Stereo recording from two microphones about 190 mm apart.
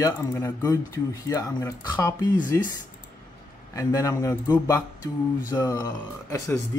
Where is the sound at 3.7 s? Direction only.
15° left (ahead or behind).